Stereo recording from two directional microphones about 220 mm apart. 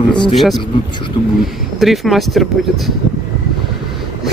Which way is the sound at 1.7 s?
Centre (ahead or behind).